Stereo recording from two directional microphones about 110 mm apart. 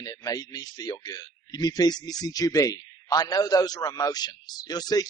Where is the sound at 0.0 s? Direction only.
35° left (ahead or behind).